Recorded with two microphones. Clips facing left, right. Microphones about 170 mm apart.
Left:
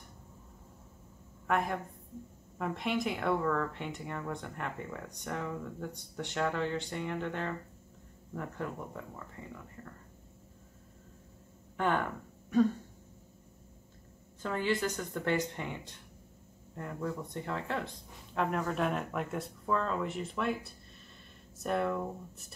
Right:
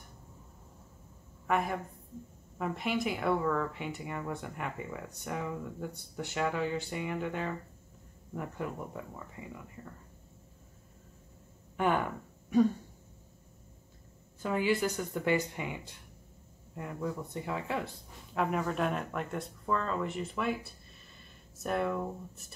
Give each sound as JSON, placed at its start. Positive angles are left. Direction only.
{"t": 1.5, "sound": "speech", "side_deg": 0}
{"t": 11.7, "sound": "a sound", "side_deg": -10}
{"t": 14.4, "sound": "speech", "side_deg": -10}